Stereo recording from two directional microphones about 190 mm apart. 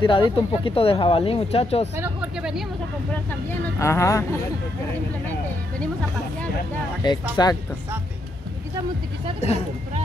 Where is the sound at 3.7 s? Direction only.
15° left (ahead or behind).